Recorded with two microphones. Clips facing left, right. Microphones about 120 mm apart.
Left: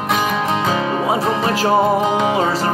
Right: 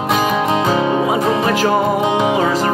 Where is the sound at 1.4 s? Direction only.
35° left (ahead or behind).